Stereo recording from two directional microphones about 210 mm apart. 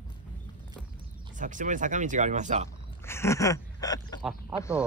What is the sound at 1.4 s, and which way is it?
Speech, 35° right (ahead or behind).